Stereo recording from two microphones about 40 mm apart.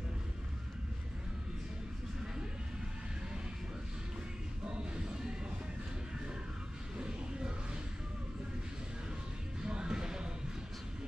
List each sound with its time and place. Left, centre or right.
4.6 s music: right
7.0 s music: centre
9.6 s music: right